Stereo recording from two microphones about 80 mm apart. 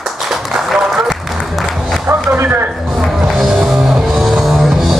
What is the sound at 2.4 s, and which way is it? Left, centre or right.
Speech, right.